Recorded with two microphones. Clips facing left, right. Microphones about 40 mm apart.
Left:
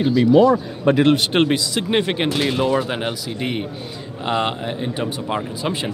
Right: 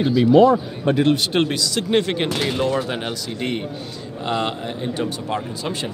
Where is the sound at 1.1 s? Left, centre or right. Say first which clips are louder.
Left 3 dB; left.